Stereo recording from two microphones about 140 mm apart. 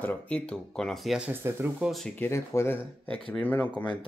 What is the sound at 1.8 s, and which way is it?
Speech, centre (ahead or behind).